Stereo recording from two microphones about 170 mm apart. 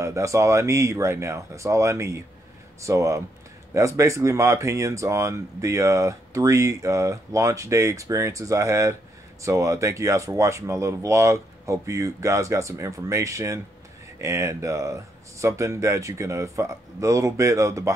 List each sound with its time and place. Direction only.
0.0 s speech: 20° right (ahead or behind)